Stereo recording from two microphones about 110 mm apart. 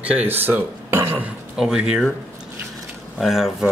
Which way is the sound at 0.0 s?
15° right (ahead or behind).